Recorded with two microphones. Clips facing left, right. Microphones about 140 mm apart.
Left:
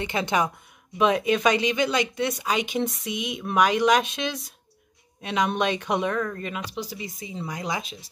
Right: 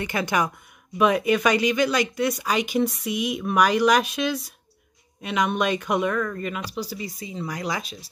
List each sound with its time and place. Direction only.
0.0 s speech: 25° left (ahead or behind)